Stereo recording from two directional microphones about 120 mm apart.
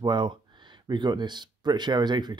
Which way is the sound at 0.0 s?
40° right (ahead or behind).